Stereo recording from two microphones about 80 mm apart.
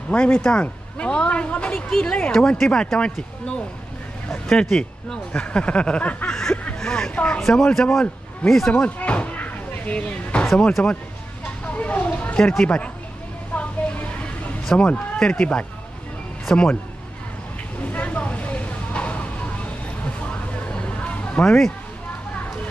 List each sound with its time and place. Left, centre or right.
0.1 s speech: centre
6.3 s a sound: centre
6.6 s speech: centre
7.4 s speech: centre
8.8 s slam: centre
10.8 s speech: centre
11.6 s a sound: centre
13.6 s vehicle: centre
14.8 s speech: centre
17.9 s a sound: centre